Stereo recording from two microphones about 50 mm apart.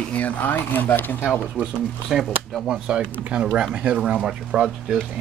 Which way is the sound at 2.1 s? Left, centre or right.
Centre.